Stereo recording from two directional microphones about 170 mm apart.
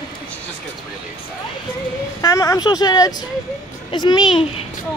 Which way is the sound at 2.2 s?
20° left (ahead or behind).